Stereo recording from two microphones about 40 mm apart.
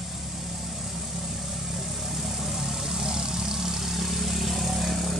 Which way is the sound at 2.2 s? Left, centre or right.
Centre.